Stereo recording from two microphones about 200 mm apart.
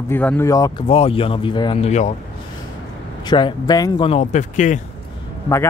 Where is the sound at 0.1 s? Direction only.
10° left (ahead or behind); by 2.1 s 35° left (ahead or behind).